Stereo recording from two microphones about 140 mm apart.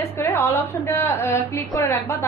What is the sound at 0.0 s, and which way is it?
A woman's voice, 15° left (ahead or behind).